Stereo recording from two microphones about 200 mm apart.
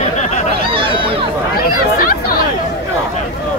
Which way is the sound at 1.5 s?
50° left (ahead or behind).